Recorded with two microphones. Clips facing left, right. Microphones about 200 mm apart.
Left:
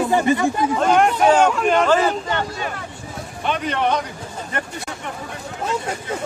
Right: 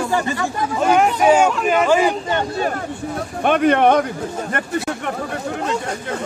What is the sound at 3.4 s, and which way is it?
Speech, 55° right (ahead or behind).